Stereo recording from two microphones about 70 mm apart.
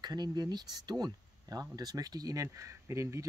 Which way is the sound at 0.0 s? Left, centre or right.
Right.